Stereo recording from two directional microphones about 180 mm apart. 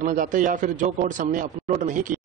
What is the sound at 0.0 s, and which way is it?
A man's voice, 45° right (ahead or behind).